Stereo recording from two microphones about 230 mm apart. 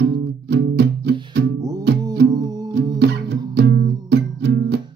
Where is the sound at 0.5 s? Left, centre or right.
Right.